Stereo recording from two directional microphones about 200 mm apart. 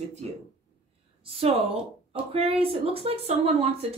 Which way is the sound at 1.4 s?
30° right (ahead or behind).